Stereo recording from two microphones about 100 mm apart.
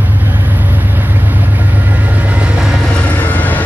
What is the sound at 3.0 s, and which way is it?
Vehicle, 15° left (ahead or behind).